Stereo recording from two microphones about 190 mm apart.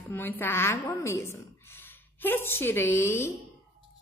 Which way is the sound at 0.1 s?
10° left (ahead or behind).